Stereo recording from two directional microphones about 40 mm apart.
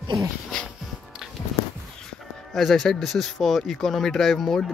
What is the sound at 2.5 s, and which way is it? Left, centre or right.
Speech, centre.